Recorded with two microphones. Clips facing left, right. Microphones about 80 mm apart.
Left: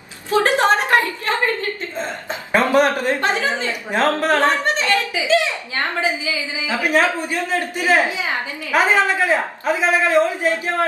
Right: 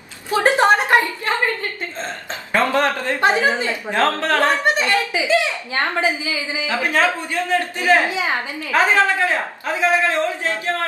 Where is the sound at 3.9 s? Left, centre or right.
Centre.